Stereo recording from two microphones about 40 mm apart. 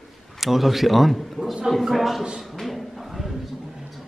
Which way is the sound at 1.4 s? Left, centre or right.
Centre.